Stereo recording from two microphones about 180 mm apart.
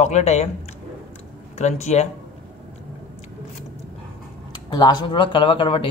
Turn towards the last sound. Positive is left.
turn(degrees=30)  # may be behind; listen again after turning